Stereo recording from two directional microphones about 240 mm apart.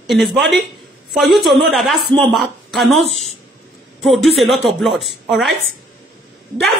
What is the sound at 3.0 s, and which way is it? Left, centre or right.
Speech, right.